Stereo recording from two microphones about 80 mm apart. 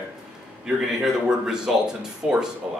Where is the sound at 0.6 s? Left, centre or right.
Centre.